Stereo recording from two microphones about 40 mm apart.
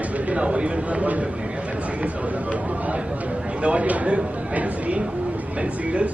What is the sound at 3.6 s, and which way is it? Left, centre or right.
A man's voice, right.